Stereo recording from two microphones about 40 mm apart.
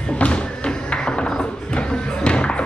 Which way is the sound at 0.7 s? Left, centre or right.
Left.